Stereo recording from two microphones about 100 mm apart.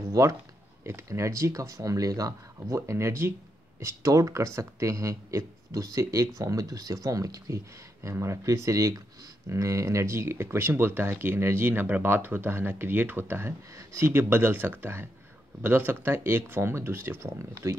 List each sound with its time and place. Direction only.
0.1 s speech: 30° right (ahead or behind)